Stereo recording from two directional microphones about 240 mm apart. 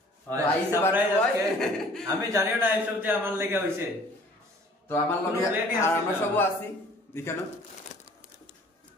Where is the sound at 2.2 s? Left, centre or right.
Centre.